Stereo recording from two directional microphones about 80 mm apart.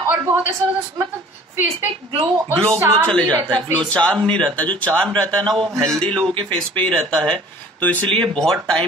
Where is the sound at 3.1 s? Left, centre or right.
Centre.